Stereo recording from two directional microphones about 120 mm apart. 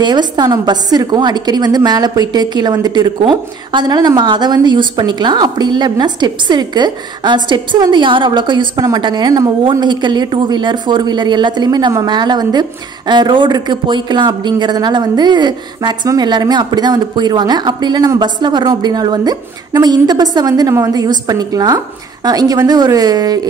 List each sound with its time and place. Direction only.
0.0 s a woman's voice: 35° right (ahead or behind)